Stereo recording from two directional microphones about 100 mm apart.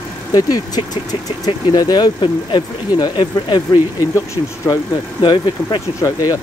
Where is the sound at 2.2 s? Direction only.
55° left (ahead or behind).